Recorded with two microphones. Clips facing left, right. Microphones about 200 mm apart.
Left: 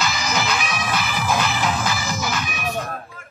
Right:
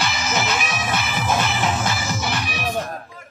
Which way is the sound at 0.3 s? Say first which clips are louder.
Right 2 dB; 25° right (ahead or behind).